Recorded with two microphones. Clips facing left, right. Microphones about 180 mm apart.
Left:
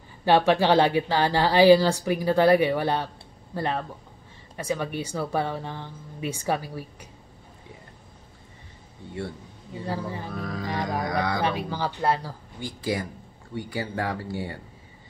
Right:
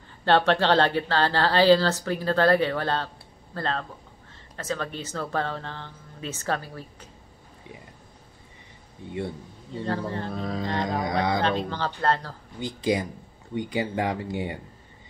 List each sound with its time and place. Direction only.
0.2 s speech: 10° left (ahead or behind)
9.8 s speech: 10° left (ahead or behind)
10.3 s music: 25° right (ahead or behind)
11.4 s speech: 10° left (ahead or behind)
12.5 s music: 20° right (ahead or behind)